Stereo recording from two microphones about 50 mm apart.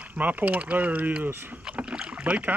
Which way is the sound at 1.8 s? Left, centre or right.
Centre.